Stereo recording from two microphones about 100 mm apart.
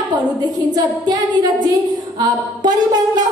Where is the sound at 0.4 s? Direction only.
45° right (ahead or behind).